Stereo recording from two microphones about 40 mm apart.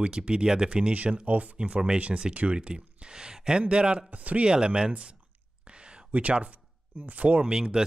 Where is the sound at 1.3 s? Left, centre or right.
Right.